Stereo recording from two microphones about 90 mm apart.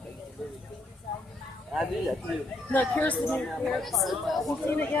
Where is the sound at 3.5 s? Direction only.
Centre (ahead or behind).